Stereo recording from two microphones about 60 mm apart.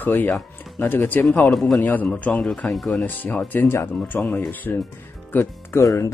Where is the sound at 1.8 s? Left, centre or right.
Left.